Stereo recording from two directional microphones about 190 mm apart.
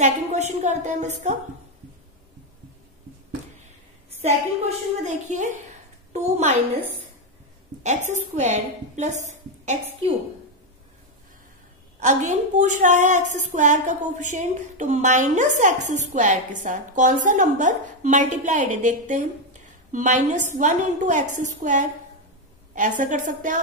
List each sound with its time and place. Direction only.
0.0 s a woman's voice: 35° right (ahead or behind)
4.2 s a woman's voice: 35° right (ahead or behind)
7.8 s a woman's voice: 40° right (ahead or behind)
12.0 s a woman's voice: 40° right (ahead or behind)